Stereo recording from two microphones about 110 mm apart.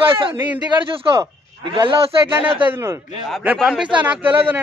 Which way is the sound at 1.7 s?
50° right (ahead or behind).